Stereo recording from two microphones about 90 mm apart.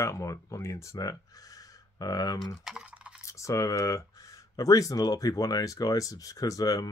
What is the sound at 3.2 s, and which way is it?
Speech, 35° left (ahead or behind).